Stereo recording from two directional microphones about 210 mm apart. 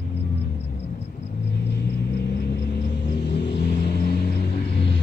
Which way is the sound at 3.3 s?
50° left (ahead or behind).